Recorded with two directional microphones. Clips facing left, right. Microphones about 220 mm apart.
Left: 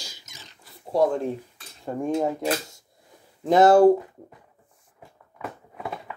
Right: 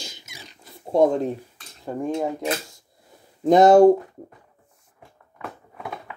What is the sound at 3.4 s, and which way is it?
Speech, 20° right (ahead or behind).